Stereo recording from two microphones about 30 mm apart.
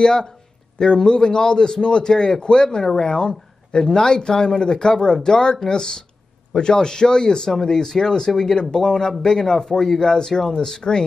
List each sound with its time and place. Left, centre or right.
0.0 s speech: left